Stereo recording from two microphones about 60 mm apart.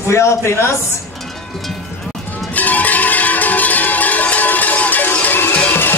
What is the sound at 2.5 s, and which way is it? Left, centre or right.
Cowbell, left.